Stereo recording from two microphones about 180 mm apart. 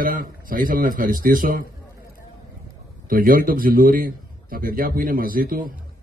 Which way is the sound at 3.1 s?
50° right (ahead or behind).